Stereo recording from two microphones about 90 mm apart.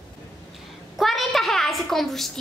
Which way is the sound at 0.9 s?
Centre (ahead or behind).